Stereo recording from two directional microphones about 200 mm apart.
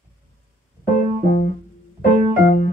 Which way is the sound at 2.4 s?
40° left (ahead or behind).